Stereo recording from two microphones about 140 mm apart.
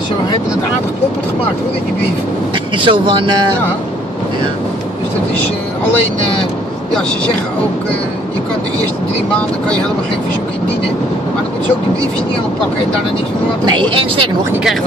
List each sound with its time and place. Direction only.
2.8 s speech: 35° right (ahead or behind)
13.7 s speech: 35° right (ahead or behind)